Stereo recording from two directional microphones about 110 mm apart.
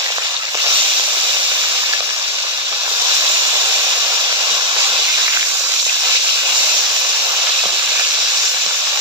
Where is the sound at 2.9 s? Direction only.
30° right (ahead or behind).